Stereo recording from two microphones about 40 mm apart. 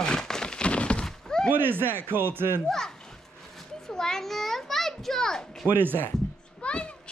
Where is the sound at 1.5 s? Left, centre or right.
Right.